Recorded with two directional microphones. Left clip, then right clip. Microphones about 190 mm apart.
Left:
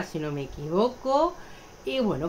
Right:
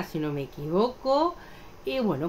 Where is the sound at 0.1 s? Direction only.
15° right (ahead or behind).